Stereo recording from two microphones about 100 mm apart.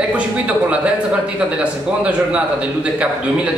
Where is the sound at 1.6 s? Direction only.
10° right (ahead or behind).